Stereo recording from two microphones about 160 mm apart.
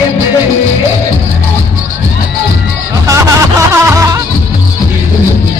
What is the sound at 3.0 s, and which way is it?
Music, 20° right (ahead or behind).